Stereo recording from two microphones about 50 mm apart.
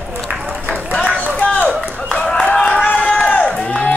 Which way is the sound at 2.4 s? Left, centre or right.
Left.